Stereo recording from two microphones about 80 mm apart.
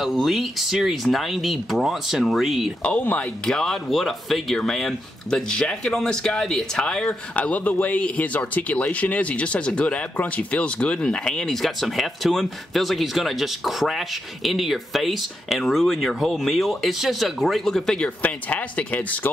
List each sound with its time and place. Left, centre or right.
0.0 s speech: centre
2.8 s speech: centre
3.4 s speech: centre
18.2 s speech: centre